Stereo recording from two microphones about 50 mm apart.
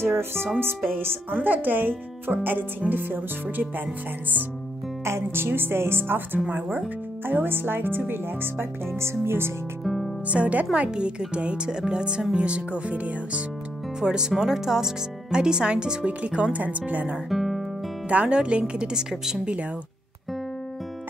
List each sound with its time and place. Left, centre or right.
0.0 s speech: right
1.4 s speech: right
5.0 s speech: right
9.8 s music: centre
10.2 s speech: right
14.0 s speech: centre
17.3 s guitar: centre
18.0 s speech: right